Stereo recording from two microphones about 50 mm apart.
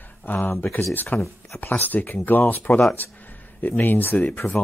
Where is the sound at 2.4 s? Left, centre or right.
Left.